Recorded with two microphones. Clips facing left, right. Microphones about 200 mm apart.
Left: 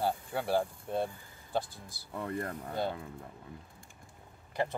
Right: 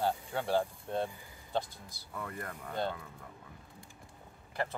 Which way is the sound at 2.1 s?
30° left (ahead or behind).